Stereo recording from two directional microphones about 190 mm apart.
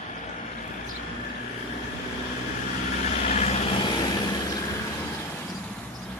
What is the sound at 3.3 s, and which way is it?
Vehicle, 35° left (ahead or behind).